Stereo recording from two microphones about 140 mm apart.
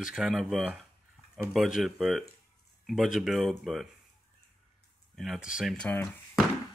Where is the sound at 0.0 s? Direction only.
5° right (ahead or behind).